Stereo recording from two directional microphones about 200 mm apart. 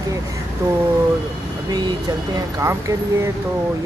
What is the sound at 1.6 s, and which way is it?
Speech, 20° right (ahead or behind).